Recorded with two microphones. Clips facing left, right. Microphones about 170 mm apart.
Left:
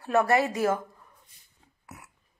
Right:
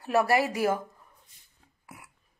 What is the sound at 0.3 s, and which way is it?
Speech, 25° left (ahead or behind).